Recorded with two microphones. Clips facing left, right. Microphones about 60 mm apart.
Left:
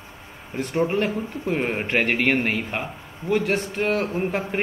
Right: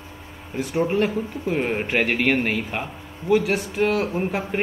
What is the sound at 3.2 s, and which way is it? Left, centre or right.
Speech, centre.